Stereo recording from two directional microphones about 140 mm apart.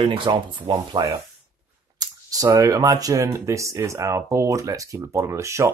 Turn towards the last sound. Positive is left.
turn(degrees=-20)  # may be behind; listen again after turning